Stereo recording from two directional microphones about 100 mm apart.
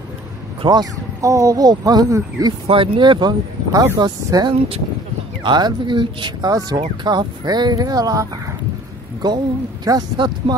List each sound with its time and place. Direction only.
0.6 s speech: 45° right (ahead or behind)
2.7 s speech: 55° right (ahead or behind); by 4.5 s 40° right (ahead or behind)
4.5 s speech: 75° right (ahead or behind)
5.4 s speech: 50° right (ahead or behind)
9.8 s speech: 45° right (ahead or behind)